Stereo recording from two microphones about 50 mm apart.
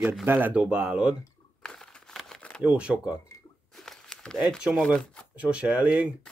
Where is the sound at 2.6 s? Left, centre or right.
Right.